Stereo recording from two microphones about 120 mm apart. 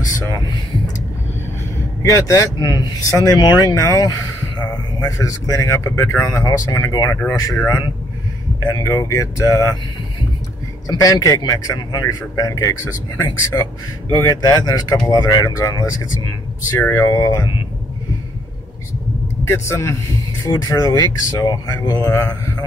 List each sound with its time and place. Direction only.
2.0 s speech: 25° left (ahead or behind)
10.9 s speech: 30° left (ahead or behind)
19.4 s speech: 20° left (ahead or behind)